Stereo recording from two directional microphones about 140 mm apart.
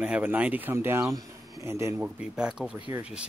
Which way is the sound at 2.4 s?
5° right (ahead or behind).